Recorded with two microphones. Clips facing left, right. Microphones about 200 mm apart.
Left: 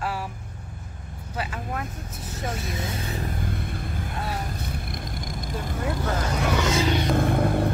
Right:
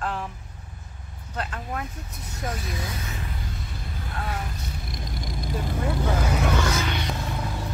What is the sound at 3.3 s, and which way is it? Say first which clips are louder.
Vehicle: left 6 dB; 55° left (ahead or behind).